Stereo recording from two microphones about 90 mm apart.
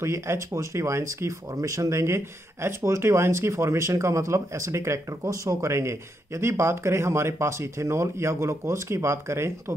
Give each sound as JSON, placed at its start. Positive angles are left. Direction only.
{"t": 0.0, "sound": "speech", "side_deg": -30}